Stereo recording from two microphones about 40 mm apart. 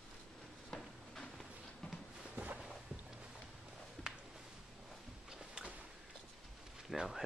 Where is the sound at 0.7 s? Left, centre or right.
Left.